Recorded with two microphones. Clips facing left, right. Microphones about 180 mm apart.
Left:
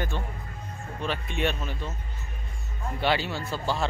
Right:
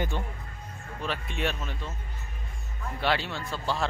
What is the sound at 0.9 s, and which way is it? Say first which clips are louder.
Speech: left 3 dB; centre (ahead or behind).